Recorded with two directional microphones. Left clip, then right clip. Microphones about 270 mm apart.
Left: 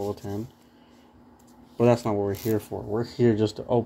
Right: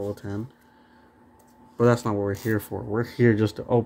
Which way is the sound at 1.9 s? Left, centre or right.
Centre.